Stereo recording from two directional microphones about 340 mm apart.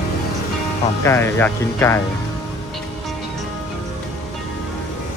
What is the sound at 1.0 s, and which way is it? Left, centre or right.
Speech, centre.